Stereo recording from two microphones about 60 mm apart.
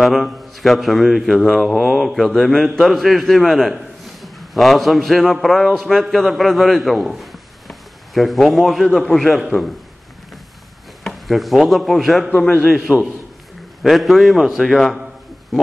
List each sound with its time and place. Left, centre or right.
0.0 s a man's voice: centre
11.1 s speech: centre
12.3 s a man's voice: left
12.6 s speech: centre